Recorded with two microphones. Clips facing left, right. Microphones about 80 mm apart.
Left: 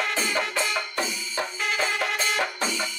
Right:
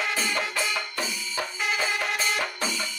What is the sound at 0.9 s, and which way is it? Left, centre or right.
Music, left.